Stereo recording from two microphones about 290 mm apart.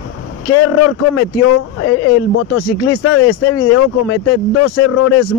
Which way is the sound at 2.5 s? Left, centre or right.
Left.